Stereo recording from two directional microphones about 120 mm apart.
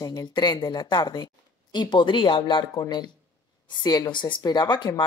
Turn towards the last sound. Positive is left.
turn(degrees=40)  # may be behind; listen again after turning